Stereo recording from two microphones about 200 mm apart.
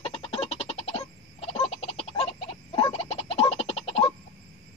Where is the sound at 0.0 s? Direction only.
30° left (ahead or behind).